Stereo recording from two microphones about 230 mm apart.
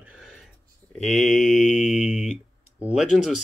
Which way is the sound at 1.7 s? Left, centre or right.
Left.